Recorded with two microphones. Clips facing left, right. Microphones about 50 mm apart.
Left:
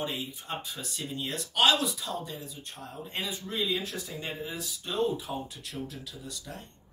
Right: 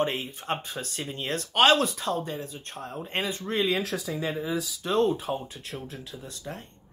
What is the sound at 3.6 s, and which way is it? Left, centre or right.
Speech, right.